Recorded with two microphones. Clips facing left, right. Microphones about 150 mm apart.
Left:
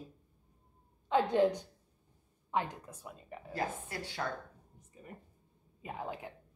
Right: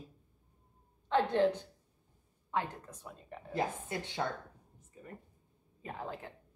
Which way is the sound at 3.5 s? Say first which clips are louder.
Right 3 dB; 20° right (ahead or behind).